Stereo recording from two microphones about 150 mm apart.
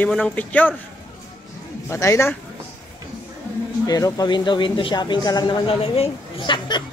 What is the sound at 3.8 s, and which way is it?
Speech, 25° left (ahead or behind).